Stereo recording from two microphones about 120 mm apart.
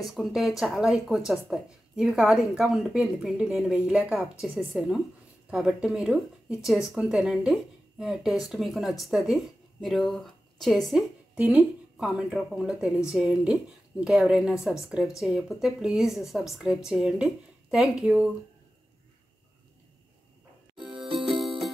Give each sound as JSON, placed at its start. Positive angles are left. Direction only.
{"t": 0.1, "sound": "a woman's voice", "side_deg": 0}
{"t": 11.3, "sound": "a woman's voice", "side_deg": -10}
{"t": 20.7, "sound": "music", "side_deg": -45}